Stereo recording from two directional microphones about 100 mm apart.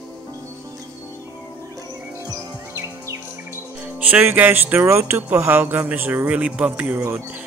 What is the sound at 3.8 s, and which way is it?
Speech, 15° right (ahead or behind).